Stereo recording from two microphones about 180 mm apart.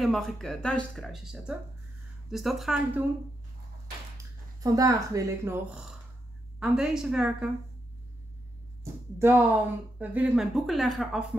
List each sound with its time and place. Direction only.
0.0 s a woman's voice: centre (ahead or behind)
4.6 s a woman's voice: 20° right (ahead or behind)
9.2 s a woman's voice: 10° right (ahead or behind)